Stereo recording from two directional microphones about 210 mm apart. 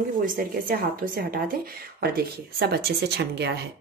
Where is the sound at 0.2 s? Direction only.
40° right (ahead or behind).